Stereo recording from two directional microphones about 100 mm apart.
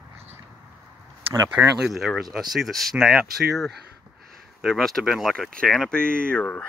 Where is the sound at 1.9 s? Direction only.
Centre (ahead or behind).